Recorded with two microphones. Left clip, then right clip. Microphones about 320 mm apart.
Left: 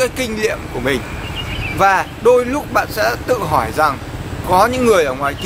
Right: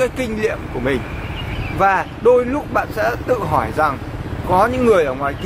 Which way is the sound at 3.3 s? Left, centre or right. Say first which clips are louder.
Left 2 dB; centre.